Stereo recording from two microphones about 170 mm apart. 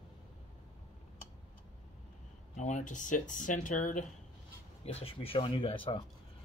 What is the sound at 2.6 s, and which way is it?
Speech, 45° left (ahead or behind).